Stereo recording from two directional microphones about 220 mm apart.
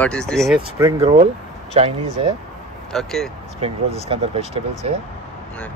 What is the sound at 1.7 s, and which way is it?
Speech, 30° right (ahead or behind).